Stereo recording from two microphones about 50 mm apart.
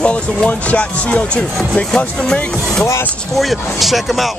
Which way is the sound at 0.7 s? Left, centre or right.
Left.